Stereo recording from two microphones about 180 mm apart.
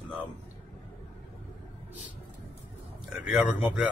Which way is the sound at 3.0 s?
5° right (ahead or behind).